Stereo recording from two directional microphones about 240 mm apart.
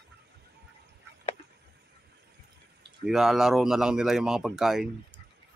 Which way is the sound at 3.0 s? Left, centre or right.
Centre.